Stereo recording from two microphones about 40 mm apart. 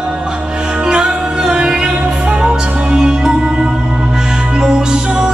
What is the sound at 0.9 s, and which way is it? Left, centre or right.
Music, centre.